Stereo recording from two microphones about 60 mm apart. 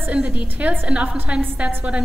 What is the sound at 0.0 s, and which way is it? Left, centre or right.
A woman's voice, right.